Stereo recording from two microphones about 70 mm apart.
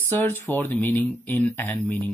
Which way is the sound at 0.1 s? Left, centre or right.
Left.